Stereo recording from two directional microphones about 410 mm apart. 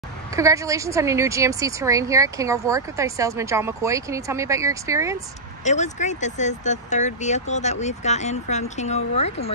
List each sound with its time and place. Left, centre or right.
0.4 s a woman's voice: centre
5.6 s speech: centre